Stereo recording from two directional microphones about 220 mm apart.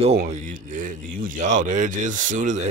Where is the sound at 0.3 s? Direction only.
35° right (ahead or behind).